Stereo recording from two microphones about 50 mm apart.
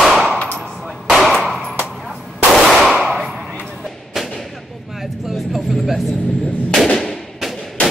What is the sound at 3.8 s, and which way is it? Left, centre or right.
Thump, centre.